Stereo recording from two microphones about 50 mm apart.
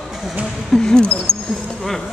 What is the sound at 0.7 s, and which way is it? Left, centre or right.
Speech, centre.